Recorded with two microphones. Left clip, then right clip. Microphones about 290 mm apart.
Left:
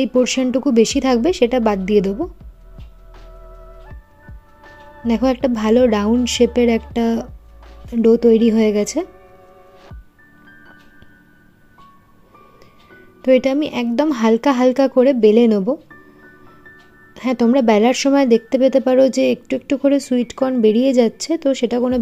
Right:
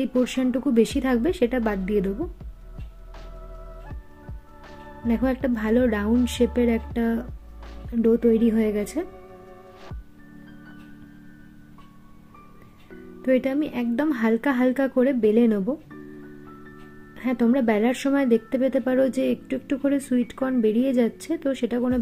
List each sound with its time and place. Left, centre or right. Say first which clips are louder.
0.2 s speech: left 7 dB; centre
5.0 s speech: left 7 dB; centre
13.2 s speech: left 8 dB; centre
17.1 s speech: left 7 dB; centre